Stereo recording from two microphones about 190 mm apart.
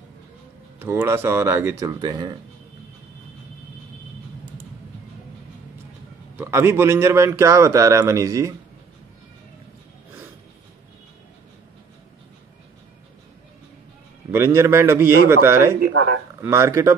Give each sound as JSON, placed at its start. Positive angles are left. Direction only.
{"t": 0.7, "sound": "a man's voice", "side_deg": -10}
{"t": 6.3, "sound": "a man's voice", "side_deg": -15}
{"t": 14.3, "sound": "a man's voice", "side_deg": -15}